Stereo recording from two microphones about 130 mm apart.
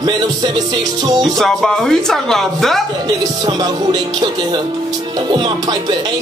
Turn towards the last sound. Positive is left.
turn(degrees=-35)  # may be behind; listen again after turning